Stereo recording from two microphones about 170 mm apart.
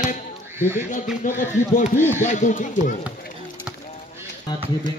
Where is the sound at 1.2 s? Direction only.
50° left (ahead or behind).